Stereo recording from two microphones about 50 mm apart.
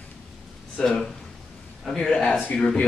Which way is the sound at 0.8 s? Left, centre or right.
Centre.